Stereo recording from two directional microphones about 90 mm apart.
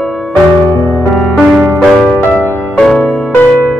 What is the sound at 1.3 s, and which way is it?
Music, 5° right (ahead or behind).